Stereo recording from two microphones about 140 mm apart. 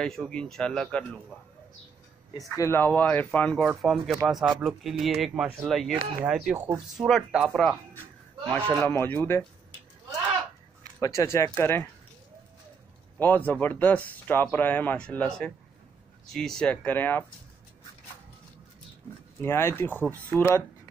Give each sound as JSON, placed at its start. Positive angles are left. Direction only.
{"t": 0.0, "sound": "speech", "side_deg": 5}
{"t": 2.5, "sound": "speech", "side_deg": 20}
{"t": 6.3, "sound": "speech", "side_deg": -10}
{"t": 7.0, "sound": "speech", "side_deg": 0}
{"t": 11.0, "sound": "speech", "side_deg": 20}
{"t": 13.2, "sound": "speech", "side_deg": 10}
{"t": 19.4, "sound": "speech", "side_deg": 15}